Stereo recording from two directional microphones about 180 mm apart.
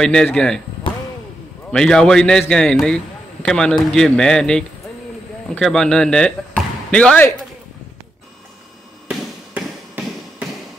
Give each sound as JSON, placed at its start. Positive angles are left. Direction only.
{"t": 0.0, "sound": "a man's voice", "side_deg": 5}
{"t": 1.7, "sound": "a man's voice", "side_deg": 5}
{"t": 9.1, "sound": "basketball bounce", "side_deg": 0}